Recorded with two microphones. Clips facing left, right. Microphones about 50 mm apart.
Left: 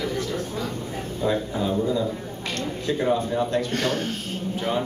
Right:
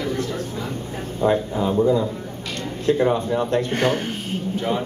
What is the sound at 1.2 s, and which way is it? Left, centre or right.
A man's voice, right.